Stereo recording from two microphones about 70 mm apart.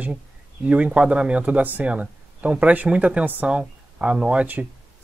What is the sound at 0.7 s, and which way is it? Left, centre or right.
Speech, centre.